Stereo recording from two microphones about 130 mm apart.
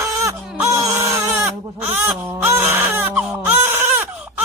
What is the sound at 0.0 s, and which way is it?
Baby cry, 20° right (ahead or behind).